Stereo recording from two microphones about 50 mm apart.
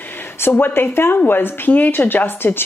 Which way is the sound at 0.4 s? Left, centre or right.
Left.